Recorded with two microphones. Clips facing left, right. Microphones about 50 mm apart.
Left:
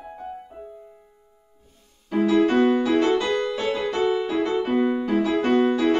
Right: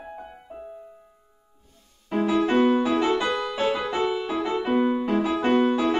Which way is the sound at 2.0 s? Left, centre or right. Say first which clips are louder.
Left 3 dB; centre.